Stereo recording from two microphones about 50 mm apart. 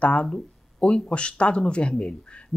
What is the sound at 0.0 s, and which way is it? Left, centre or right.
Speech, left.